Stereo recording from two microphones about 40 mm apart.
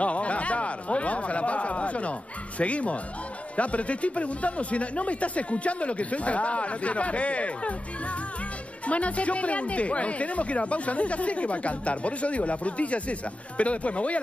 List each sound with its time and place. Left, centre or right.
0.0 s a sound: left
2.6 s speech: left
8.8 s speech: left